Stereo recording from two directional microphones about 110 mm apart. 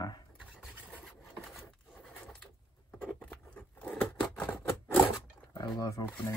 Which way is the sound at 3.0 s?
15° left (ahead or behind).